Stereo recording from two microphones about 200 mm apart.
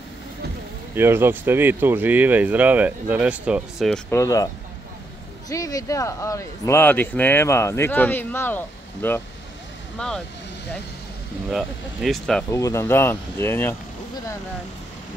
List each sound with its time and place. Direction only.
0.9 s speech: 10° right (ahead or behind)
4.1 s speech: 15° left (ahead or behind)
5.5 s speech: 15° left (ahead or behind)
11.5 s speech: centre (ahead or behind)
12.4 s speech: 15° left (ahead or behind)